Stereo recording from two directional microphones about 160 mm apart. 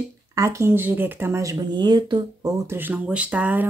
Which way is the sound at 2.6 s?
15° right (ahead or behind).